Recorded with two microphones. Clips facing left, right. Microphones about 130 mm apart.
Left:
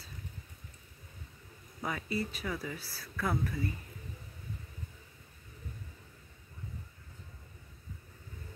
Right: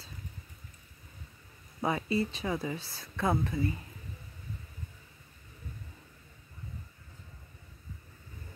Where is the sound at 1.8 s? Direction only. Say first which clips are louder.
Right 6 dB; 25° right (ahead or behind).